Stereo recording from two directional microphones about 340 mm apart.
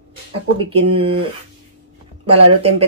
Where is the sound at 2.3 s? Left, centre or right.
Right.